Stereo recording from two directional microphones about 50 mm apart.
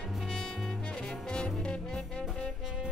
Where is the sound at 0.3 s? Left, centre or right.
Centre.